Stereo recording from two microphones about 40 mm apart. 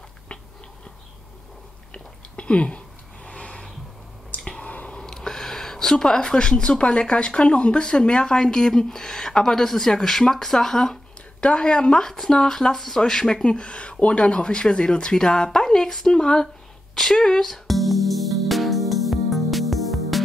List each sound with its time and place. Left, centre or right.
2.3 s a sound: left
4.6 s a sound: left
5.0 s speech: centre
11.4 s speech: left
12.1 s speech: centre
16.9 s music: centre